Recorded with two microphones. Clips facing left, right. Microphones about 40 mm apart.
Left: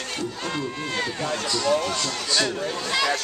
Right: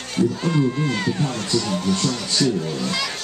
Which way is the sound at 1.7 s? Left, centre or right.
Left.